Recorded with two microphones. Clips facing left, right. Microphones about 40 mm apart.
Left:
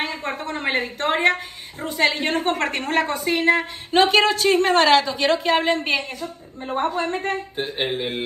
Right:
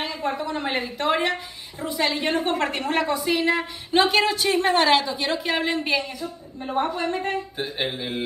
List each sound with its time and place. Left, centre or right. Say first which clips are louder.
0.0 s a woman's voice: even; left
5.4 s a woman's voice: left 4 dB; left